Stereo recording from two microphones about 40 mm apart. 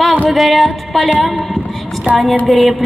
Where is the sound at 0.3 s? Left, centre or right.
Centre.